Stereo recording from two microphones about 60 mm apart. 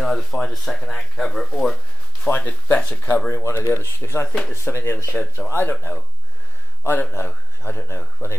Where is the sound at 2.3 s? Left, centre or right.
Left.